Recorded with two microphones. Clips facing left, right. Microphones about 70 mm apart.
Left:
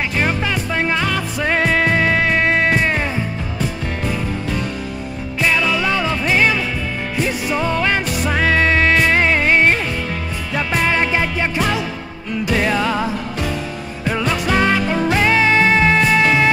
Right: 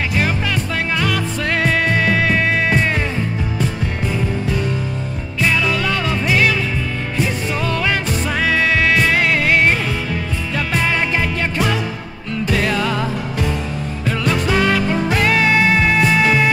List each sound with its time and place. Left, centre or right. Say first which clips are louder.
0.9 s music: even; centre
5.6 s music: left 1 dB; centre
7.5 s music: left 3 dB; centre
8.5 s music: even; left
8.9 s music: left 1 dB; centre